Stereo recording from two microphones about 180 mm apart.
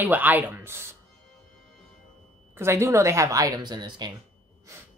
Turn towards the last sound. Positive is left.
turn(degrees=-25)  # may be behind; listen again after turning